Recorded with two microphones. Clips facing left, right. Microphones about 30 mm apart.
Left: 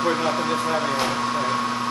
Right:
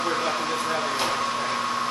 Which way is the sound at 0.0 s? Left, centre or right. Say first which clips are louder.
Left 3 dB; centre.